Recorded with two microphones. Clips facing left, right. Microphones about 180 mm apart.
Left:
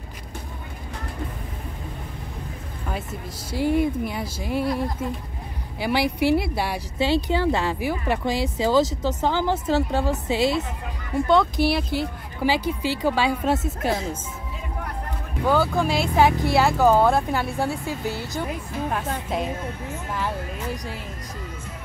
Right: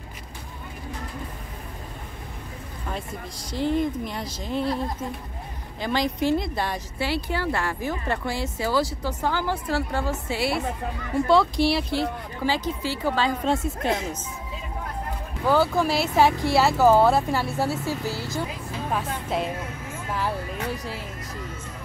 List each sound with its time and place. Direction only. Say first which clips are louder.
3.5 s speech: left 3 dB; 10° left (ahead or behind)
5.8 s speech: left 2 dB; 10° left (ahead or behind)
7.0 s speech: left 6 dB; 20° left (ahead or behind)
11.2 s speech: left 1 dB; centre (ahead or behind)
12.4 s speech: left 3 dB; 10° left (ahead or behind)
15.4 s speech: even; centre (ahead or behind)
20.7 s speech: even; 5° right (ahead or behind)